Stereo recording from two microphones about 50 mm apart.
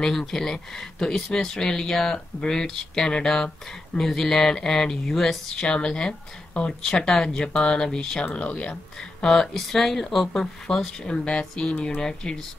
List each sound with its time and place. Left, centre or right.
0.0 s speech: centre
8.4 s speech: left
9.2 s speech: centre